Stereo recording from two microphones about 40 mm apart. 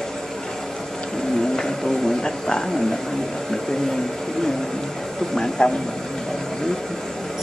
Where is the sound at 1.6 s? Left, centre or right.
Centre.